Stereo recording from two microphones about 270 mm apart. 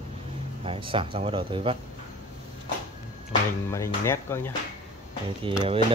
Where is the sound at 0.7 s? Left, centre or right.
Centre.